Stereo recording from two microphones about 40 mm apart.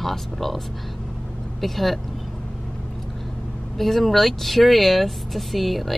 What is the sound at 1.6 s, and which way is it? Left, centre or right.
Speech, centre.